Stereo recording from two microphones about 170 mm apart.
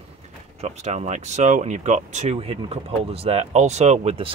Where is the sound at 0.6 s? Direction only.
40° right (ahead or behind).